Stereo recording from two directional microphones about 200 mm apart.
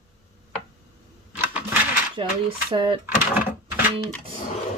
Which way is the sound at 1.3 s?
5° right (ahead or behind).